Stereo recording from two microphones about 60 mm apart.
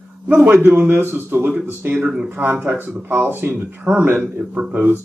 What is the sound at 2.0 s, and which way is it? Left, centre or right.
Speech, centre.